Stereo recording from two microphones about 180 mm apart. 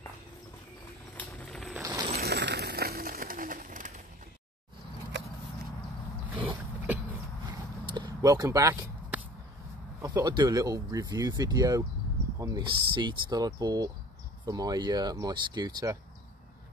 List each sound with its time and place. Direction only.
1.1 s vehicle: 10° left (ahead or behind)
1.8 s zipper: 25° right (ahead or behind)
2.1 s pigeon: 65° right (ahead or behind); by 4.0 s 50° right (ahead or behind)
7.8 s a sound: 25° right (ahead or behind)
10.0 s speech: 25° right (ahead or behind)